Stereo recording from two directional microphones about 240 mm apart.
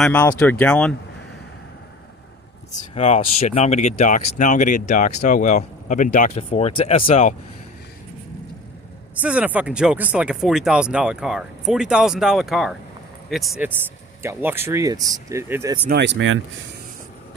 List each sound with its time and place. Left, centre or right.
0.0 s speech: centre
2.7 s speech: left
9.2 s speech: centre
15.9 s speech: right